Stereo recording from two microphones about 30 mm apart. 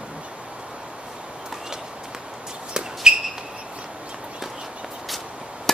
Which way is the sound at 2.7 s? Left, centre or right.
Right.